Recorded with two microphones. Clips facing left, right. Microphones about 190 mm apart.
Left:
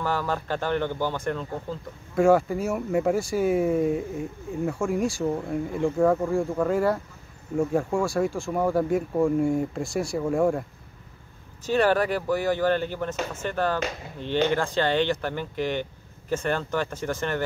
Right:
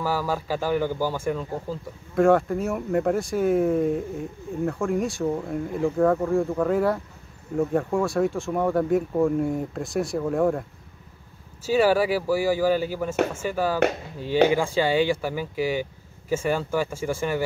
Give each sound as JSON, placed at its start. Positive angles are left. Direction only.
{"t": 0.0, "sound": "speech", "side_deg": -5}
{"t": 11.6, "sound": "speech", "side_deg": -5}